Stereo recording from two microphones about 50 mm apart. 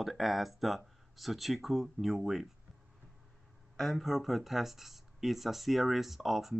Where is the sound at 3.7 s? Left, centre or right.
Centre.